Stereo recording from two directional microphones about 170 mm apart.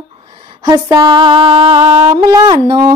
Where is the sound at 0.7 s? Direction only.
20° right (ahead or behind).